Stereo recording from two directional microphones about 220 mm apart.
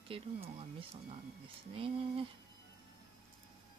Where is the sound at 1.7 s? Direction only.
25° right (ahead or behind).